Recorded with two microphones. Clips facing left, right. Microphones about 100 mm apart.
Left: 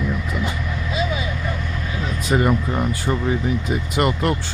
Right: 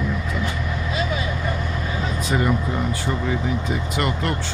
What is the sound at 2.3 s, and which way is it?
Speech, 30° left (ahead or behind).